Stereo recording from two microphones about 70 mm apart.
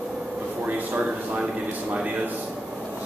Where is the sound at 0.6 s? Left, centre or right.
Right.